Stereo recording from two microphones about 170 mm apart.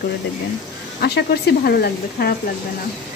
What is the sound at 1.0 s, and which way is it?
Speech, 75° left (ahead or behind).